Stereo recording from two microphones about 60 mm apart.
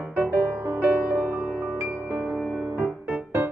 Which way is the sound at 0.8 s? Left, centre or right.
Right.